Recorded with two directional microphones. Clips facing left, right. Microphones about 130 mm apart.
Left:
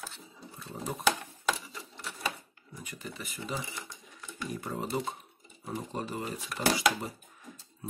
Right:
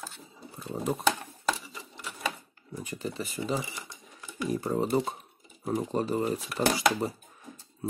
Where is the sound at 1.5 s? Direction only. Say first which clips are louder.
Even; 10° right (ahead or behind).